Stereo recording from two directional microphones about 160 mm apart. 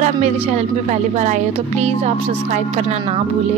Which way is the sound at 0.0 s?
45° right (ahead or behind).